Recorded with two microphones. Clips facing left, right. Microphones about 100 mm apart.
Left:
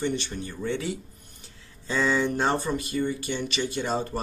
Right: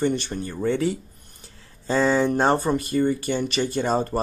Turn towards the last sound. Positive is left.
turn(degrees=-45)  # may be behind; listen again after turning